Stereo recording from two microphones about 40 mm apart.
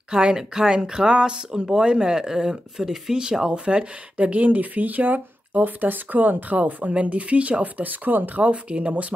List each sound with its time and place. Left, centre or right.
0.1 s speech: centre; by 8.5 s right
8.5 s speech: right